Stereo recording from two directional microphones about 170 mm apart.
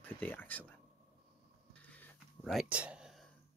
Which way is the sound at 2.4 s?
5° right (ahead or behind).